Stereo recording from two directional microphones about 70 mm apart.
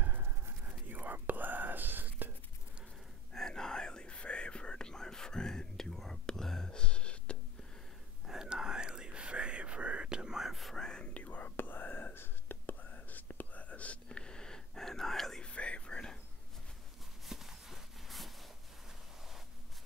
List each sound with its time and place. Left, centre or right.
0.0 s whispering: right
3.3 s whispering: centre
8.3 s whispering: centre
11.2 s whispering: left; by 15.5 s centre
15.5 s whispering: centre
17.3 s a sound: centre